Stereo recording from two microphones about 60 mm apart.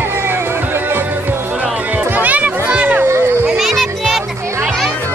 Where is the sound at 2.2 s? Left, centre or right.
Right.